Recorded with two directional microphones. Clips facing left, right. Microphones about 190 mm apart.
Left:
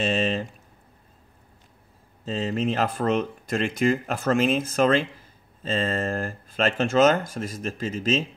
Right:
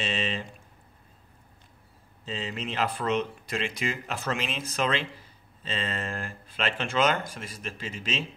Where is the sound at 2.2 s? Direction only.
45° left (ahead or behind).